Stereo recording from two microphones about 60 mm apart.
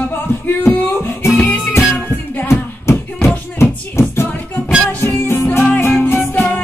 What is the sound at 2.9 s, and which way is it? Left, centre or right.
Music, left.